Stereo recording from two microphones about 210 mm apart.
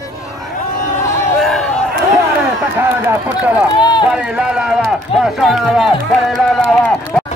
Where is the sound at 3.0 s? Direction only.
10° right (ahead or behind).